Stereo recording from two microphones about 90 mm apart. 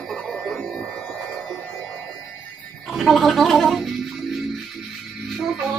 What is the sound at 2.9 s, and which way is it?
Gargling, centre (ahead or behind).